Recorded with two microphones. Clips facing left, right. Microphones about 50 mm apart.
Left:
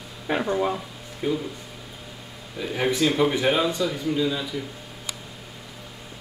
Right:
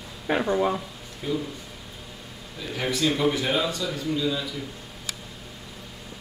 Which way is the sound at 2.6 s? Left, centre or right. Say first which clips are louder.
Left 4 dB; centre.